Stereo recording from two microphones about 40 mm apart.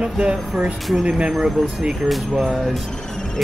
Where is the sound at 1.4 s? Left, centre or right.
Centre.